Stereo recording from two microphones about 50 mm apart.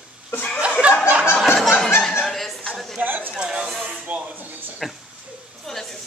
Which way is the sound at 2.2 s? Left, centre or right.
Centre.